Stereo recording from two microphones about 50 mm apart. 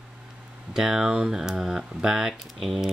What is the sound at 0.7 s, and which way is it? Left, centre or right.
Speech, centre.